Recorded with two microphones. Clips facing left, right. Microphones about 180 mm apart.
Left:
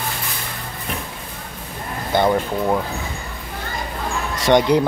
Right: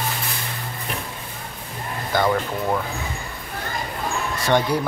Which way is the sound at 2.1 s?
20° left (ahead or behind).